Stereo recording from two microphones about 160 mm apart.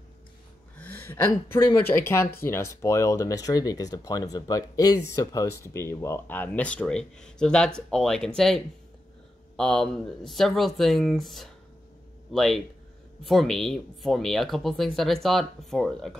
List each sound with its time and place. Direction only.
0.7 s speech: 10° left (ahead or behind)